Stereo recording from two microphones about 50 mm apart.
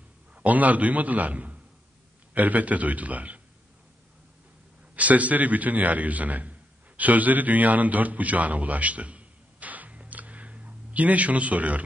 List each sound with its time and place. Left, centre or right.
0.3 s a man's voice: right
4.9 s a man's voice: right